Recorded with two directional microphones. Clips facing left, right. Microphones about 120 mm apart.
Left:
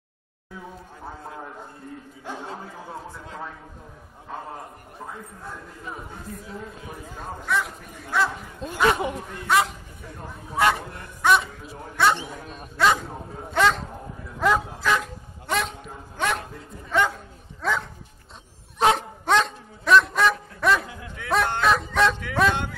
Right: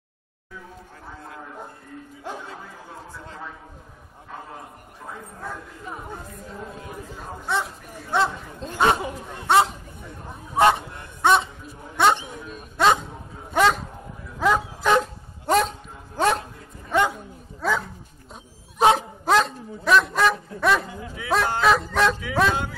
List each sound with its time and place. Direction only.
7.4 s speech: 30° right (ahead or behind)
10.5 s a sound: 25° right (ahead or behind)
11.2 s a man's voice: 25° right (ahead or behind)
12.0 s bow-wow: 20° right (ahead or behind)
13.5 s a sound: 10° right (ahead or behind)
14.4 s bow-wow: centre (ahead or behind)
14.8 s vehicle: 25° right (ahead or behind)
15.4 s bow-wow: 40° right (ahead or behind)
16.9 s dog: 15° right (ahead or behind)
18.9 s dog: 5° right (ahead or behind)
21.1 s bow-wow: 5° right (ahead or behind)